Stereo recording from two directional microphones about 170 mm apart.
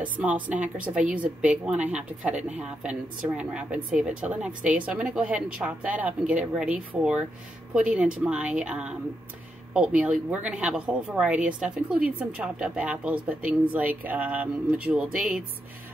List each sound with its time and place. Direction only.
0.0 s a woman's voice: 10° right (ahead or behind)